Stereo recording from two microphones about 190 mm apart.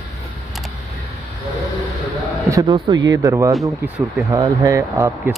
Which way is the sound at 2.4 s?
15° right (ahead or behind).